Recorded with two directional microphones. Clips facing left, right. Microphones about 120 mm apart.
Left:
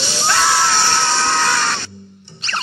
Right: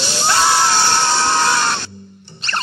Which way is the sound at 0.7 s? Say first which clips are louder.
Right 1 dB; 45° right (ahead or behind).